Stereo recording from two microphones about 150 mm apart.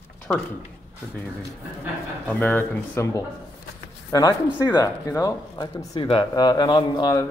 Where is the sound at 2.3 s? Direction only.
15° left (ahead or behind).